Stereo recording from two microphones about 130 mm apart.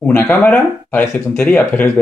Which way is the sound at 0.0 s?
15° left (ahead or behind).